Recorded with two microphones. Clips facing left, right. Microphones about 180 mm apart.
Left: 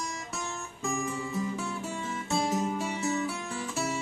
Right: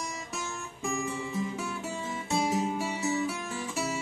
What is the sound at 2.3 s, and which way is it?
Music, 5° right (ahead or behind).